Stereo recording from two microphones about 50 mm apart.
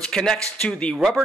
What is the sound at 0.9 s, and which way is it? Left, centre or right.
Speech, centre.